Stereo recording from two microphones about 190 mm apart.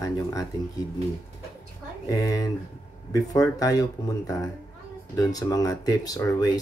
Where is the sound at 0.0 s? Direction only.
20° left (ahead or behind).